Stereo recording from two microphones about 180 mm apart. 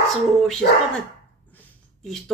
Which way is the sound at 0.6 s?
55° left (ahead or behind).